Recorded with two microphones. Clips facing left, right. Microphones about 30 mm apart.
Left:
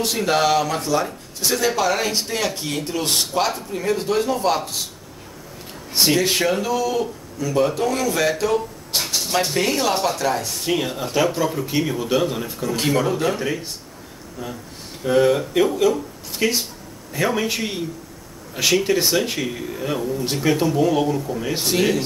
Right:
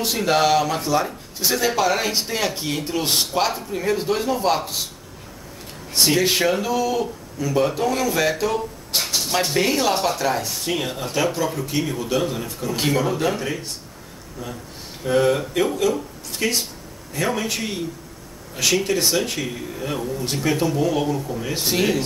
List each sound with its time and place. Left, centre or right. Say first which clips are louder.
0.0 s speech: even; centre
6.1 s speech: even; centre
15.0 s speech: left 2 dB; centre